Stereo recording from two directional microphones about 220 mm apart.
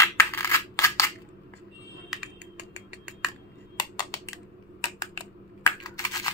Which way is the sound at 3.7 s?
20° left (ahead or behind).